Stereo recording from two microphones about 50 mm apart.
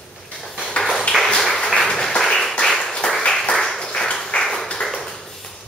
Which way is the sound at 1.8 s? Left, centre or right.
Centre.